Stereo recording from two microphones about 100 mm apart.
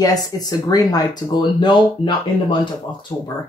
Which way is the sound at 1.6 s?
55° left (ahead or behind).